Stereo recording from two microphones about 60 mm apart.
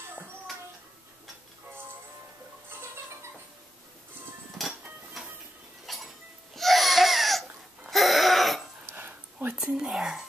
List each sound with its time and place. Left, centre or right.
5.2 s a sound: centre
5.9 s chink: centre
6.5 s crying: centre
7.9 s a sound: centre
8.8 s dog: right
9.6 s whispering: centre